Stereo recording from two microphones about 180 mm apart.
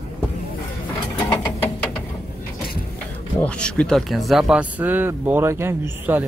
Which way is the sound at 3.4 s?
5° left (ahead or behind).